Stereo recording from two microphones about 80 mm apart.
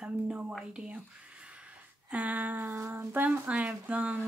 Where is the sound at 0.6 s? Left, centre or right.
Centre.